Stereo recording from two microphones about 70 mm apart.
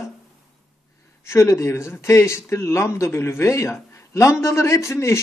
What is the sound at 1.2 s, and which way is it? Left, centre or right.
Speech, left.